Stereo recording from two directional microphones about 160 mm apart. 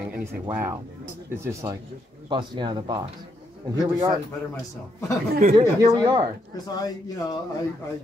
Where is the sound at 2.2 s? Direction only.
30° right (ahead or behind).